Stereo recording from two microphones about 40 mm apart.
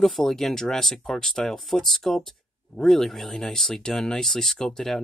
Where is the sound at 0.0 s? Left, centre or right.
Centre.